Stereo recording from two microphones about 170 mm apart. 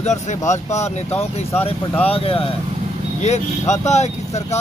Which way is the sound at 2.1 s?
35° left (ahead or behind).